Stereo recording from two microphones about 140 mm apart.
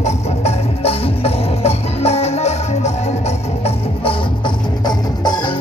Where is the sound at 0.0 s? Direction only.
50° left (ahead or behind).